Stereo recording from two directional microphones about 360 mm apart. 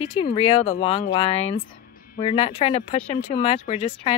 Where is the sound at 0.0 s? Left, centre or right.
Centre.